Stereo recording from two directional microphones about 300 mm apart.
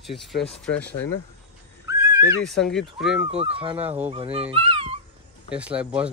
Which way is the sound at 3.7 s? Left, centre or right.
Centre.